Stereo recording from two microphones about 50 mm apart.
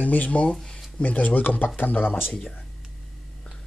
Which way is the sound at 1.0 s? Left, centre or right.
Left.